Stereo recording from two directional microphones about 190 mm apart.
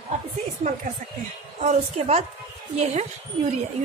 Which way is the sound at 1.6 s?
35° right (ahead or behind).